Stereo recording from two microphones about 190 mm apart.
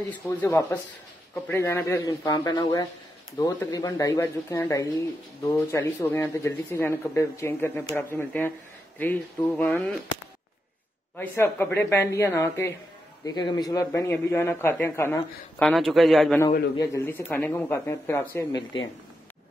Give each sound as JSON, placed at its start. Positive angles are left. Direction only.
{"t": 0.4, "sound": "speech", "side_deg": 15}
{"t": 11.1, "sound": "speech", "side_deg": 10}
{"t": 15.7, "sound": "a man's voice", "side_deg": 0}
{"t": 16.7, "sound": "speech", "side_deg": 15}